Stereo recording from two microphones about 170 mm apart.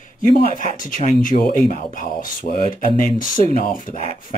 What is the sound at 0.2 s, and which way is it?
Speech, 50° left (ahead or behind).